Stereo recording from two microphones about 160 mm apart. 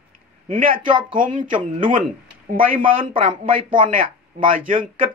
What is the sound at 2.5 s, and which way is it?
Speech, 55° right (ahead or behind).